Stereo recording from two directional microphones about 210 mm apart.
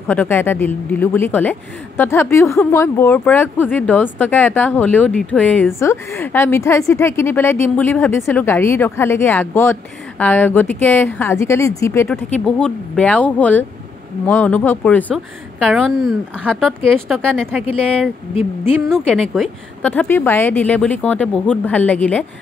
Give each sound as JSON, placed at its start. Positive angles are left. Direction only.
{"t": 0.1, "sound": "speech", "side_deg": 10}
{"t": 15.1, "sound": "a woman's voice", "side_deg": -5}